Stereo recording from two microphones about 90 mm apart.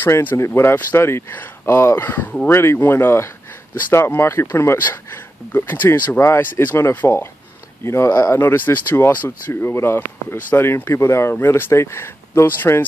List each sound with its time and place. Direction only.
0.0 s speech: 20° left (ahead or behind); by 8.4 s 35° left (ahead or behind)
8.4 s speech: 20° left (ahead or behind)